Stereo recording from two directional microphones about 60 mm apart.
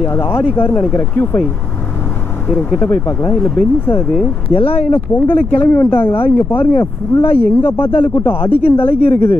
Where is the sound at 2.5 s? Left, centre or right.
Left.